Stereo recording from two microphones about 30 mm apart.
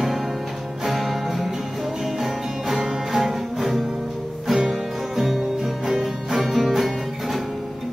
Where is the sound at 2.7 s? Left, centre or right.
Centre.